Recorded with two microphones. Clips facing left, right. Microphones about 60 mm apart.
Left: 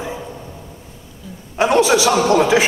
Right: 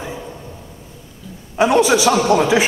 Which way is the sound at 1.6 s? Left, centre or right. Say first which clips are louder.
Right 1 dB; centre.